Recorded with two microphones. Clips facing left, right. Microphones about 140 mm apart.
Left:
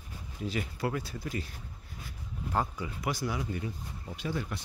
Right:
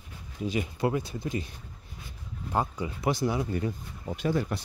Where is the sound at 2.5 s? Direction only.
20° right (ahead or behind).